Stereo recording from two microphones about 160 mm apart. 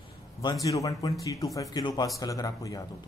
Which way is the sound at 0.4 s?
25° left (ahead or behind).